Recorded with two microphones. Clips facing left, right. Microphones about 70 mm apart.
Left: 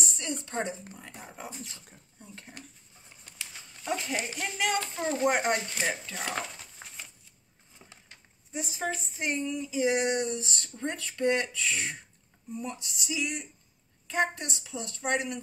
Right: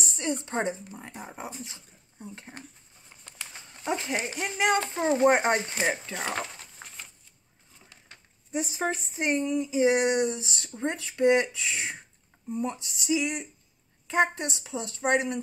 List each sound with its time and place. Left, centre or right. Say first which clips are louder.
0.1 s speech: right 9 dB; right
6.3 s a sound: right 2 dB; centre
8.7 s speech: right 4 dB; right